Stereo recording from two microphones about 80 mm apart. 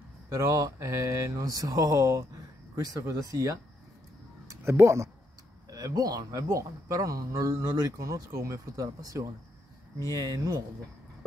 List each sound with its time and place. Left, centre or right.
0.3 s mantra: right
4.5 s speech: right
5.7 s mantra: right